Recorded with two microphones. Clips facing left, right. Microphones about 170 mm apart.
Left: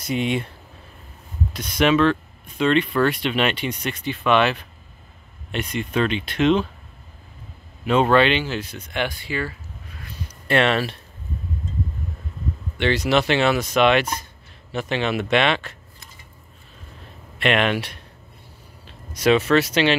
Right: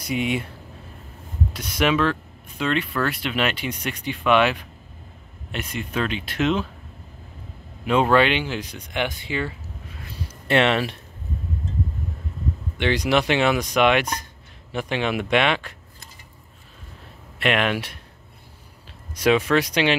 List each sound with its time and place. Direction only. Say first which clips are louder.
0.0 s speech: left 1 dB; 10° right (ahead or behind)
1.5 s speech: left 3 dB; 10° right (ahead or behind)
7.8 s speech: left 1 dB; 10° right (ahead or behind)
12.7 s speech: left 1 dB; 15° right (ahead or behind)
17.4 s speech: left 2 dB; 5° right (ahead or behind)
19.1 s speech: left 2 dB; 10° right (ahead or behind)